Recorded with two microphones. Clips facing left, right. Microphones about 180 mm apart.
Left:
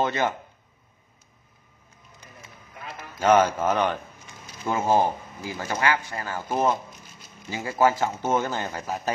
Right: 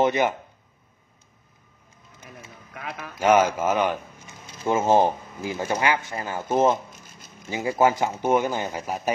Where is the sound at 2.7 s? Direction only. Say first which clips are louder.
Right 4 dB; 70° right (ahead or behind).